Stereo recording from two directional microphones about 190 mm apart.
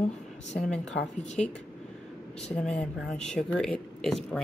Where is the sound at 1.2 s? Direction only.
35° left (ahead or behind).